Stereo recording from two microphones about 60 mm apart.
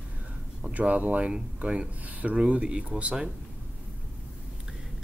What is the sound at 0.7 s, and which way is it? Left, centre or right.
Speech, right.